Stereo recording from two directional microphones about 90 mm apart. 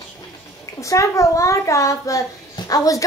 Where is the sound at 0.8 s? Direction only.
35° left (ahead or behind).